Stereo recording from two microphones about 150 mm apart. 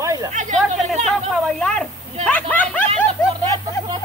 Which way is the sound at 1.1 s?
Centre (ahead or behind).